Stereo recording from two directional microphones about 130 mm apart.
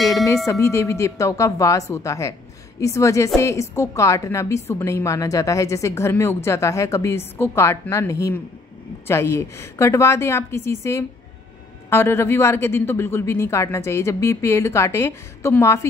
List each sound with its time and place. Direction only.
0.1 s music: 25° left (ahead or behind)
0.5 s a woman's voice: 20° left (ahead or behind)